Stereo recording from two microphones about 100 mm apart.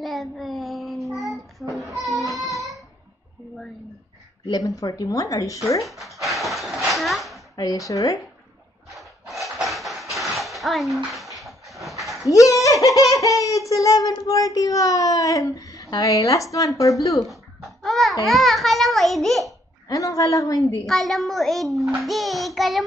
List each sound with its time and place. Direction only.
0.0 s child singing: centre (ahead or behind)
1.8 s a sound: centre (ahead or behind)
4.5 s speech: 35° left (ahead or behind)
5.9 s speech: centre (ahead or behind)
6.2 s a sound: centre (ahead or behind)
7.5 s speech: 35° left (ahead or behind)
8.9 s horse: centre (ahead or behind)
10.1 s a sound: centre (ahead or behind)
12.0 s dog: centre (ahead or behind)
12.3 s speech: 35° left (ahead or behind)
17.3 s babbling: centre (ahead or behind)
18.2 s a child's voice: centre (ahead or behind)
19.9 s speech: 35° left (ahead or behind)
20.8 s a child's voice: centre (ahead or behind)